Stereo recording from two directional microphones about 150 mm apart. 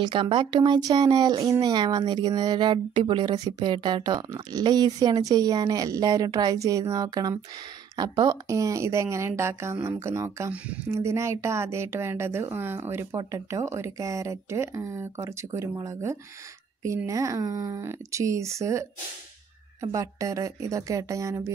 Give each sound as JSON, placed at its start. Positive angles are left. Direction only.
{"t": 0.0, "sound": "speech", "side_deg": -35}